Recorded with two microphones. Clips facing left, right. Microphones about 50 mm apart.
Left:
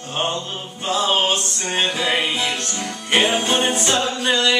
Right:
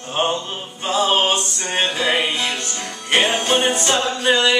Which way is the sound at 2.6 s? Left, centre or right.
Centre.